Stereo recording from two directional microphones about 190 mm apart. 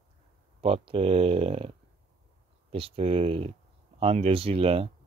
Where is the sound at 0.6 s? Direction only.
30° right (ahead or behind).